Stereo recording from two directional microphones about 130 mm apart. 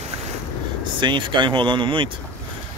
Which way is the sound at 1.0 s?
35° right (ahead or behind).